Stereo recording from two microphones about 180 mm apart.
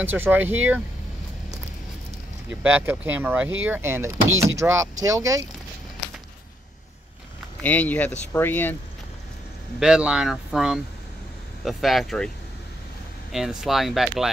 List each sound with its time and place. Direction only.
0.0 s speech: 10° right (ahead or behind)
2.6 s speech: 10° right (ahead or behind)
7.6 s speech: 10° left (ahead or behind)
9.8 s speech: 5° right (ahead or behind)
13.3 s speech: centre (ahead or behind)